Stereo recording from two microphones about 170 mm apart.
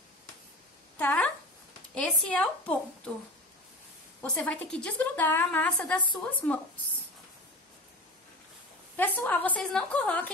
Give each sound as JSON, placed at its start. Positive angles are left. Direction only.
{"t": 0.9, "sound": "a sound", "side_deg": 10}
{"t": 2.0, "sound": "a woman's voice", "side_deg": 5}
{"t": 4.2, "sound": "a woman's voice", "side_deg": 10}
{"t": 8.9, "sound": "a woman's voice", "side_deg": 10}